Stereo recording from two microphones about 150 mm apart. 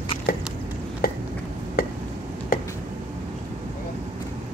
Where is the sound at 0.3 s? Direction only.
90° left.